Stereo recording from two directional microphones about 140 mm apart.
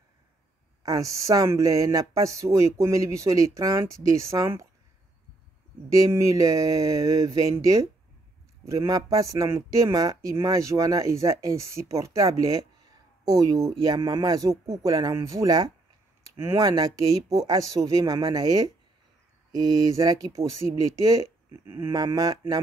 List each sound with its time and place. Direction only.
0.8 s speech: 25° right (ahead or behind)
5.9 s speech: 25° right (ahead or behind)